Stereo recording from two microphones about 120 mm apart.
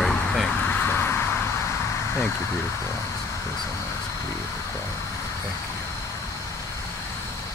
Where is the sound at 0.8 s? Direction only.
20° left (ahead or behind).